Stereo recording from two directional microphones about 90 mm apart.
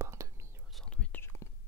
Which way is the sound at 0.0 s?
30° right (ahead or behind).